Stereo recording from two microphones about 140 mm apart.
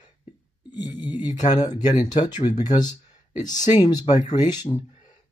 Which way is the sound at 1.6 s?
30° left (ahead or behind).